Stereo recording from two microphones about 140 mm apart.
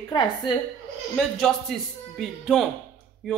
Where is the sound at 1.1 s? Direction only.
Centre (ahead or behind).